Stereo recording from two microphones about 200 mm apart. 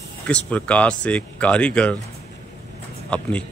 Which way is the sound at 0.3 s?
5° left (ahead or behind).